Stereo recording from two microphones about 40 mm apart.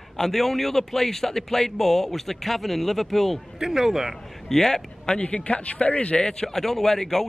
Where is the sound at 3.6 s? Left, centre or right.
Centre.